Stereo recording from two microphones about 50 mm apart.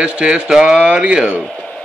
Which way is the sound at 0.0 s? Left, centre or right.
Right.